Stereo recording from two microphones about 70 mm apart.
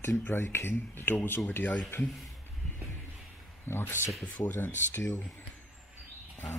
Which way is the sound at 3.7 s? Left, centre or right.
Left.